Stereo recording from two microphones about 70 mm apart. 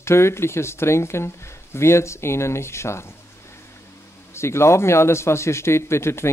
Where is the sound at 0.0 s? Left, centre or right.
Left.